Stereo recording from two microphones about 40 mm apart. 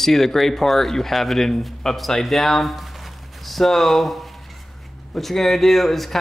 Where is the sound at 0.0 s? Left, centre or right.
Centre.